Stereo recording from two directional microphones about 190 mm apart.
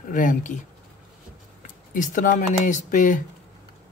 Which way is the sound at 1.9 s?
45° left (ahead or behind).